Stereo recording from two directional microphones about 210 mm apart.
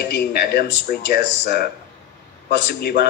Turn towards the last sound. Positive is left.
turn(degrees=50)  # may be behind; listen again after turning